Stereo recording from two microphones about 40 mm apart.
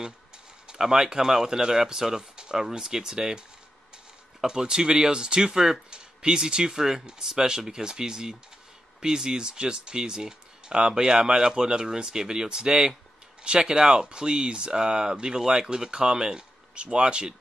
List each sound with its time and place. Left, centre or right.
0.7 s speech: centre